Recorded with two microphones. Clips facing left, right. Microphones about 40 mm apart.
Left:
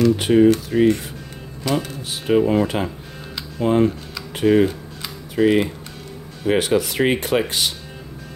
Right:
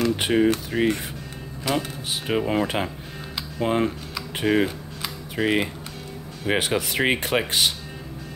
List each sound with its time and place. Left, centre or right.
0.0 s speech: centre